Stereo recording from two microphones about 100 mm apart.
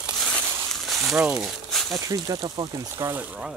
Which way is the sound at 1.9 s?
35° right (ahead or behind).